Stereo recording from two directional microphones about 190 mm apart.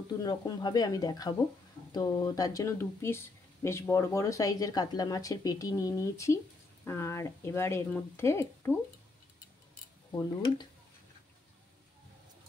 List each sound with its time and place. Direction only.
0.2 s speech: 20° left (ahead or behind)
10.1 s speech: 20° left (ahead or behind)